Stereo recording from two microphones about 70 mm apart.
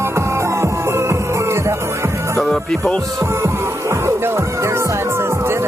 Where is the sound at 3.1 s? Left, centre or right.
Right.